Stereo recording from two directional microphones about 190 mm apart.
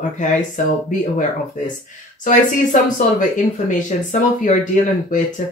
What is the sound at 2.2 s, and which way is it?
Speech, 40° left (ahead or behind).